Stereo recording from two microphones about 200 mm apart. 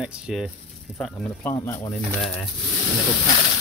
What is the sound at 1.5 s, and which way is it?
Speech, 15° left (ahead or behind).